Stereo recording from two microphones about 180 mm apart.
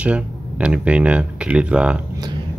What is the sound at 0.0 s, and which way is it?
Speech, 5° right (ahead or behind).